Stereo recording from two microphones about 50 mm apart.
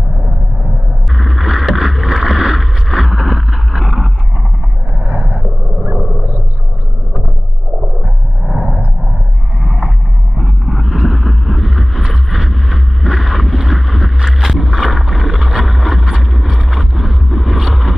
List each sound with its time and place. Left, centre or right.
1.1 s boat: centre
4.9 s a sound: right
8.5 s vehicle: right
9.6 s boat: right
10.7 s vehicle: centre
14.6 s vehicle: right
16.3 s vehicle: centre